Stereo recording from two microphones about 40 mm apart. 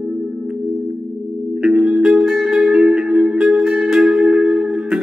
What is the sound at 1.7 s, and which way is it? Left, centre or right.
Music, centre.